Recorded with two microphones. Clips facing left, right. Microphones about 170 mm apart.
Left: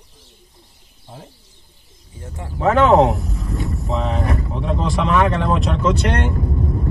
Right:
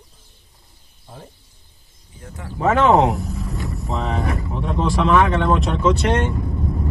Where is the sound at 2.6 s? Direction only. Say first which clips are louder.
Left 2 dB; centre (ahead or behind).